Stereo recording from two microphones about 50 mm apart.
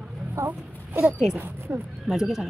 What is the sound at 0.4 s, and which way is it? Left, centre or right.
Speech, right.